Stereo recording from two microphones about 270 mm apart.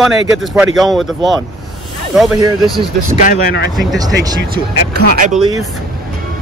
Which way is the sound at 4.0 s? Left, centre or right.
Centre.